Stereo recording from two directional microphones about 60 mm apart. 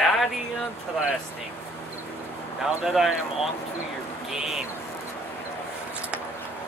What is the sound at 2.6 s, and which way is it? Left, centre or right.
Speech, centre.